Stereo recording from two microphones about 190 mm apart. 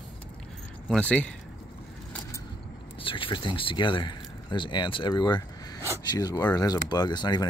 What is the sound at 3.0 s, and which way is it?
Speech, 25° left (ahead or behind).